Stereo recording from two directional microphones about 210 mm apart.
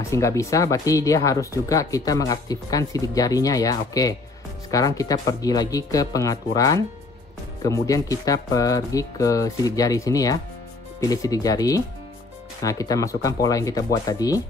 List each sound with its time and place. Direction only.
0.1 s speech: 15° left (ahead or behind)